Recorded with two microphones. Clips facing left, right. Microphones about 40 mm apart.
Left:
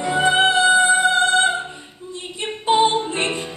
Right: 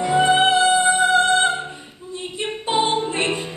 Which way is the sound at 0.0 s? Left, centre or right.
Centre.